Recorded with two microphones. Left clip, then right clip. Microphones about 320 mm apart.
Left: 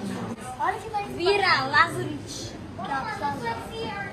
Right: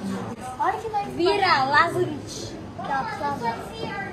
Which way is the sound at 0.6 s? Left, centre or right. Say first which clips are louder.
Right 3 dB; right.